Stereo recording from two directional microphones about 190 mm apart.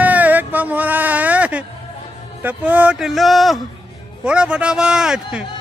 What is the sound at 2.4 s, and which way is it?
Speech, 10° right (ahead or behind).